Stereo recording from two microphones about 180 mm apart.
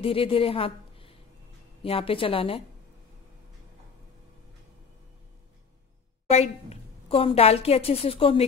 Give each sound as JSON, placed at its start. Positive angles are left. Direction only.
{"t": 0.0, "sound": "a woman's voice", "side_deg": 30}
{"t": 6.2, "sound": "a woman's voice", "side_deg": 35}